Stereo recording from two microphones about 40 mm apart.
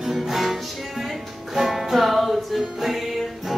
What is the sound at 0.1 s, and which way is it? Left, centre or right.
Music, centre.